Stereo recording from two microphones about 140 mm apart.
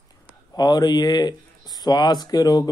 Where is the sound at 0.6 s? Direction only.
30° left (ahead or behind).